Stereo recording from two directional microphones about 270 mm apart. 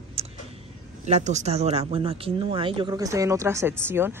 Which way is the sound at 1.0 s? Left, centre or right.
Right.